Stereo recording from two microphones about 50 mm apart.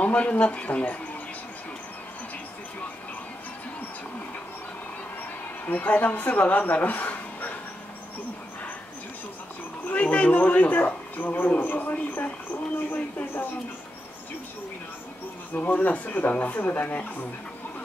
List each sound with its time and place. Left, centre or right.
0.0 s speech: left
5.7 s speech: left
9.8 s speech: left
15.5 s speech: left